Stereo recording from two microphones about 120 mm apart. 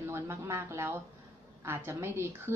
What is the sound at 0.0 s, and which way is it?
A woman's voice, 20° right (ahead or behind).